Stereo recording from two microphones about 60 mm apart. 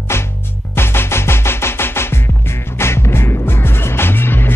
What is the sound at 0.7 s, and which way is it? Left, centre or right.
Music, left.